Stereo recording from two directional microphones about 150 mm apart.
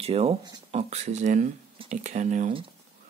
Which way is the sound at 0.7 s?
45° right (ahead or behind).